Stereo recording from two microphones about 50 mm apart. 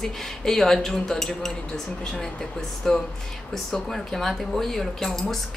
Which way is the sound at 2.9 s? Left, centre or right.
Centre.